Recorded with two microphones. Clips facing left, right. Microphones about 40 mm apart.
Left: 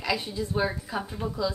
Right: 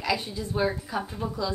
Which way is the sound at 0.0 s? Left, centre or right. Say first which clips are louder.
Even; centre.